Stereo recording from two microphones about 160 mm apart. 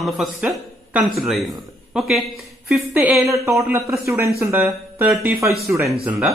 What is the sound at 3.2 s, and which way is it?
Speech, 20° right (ahead or behind).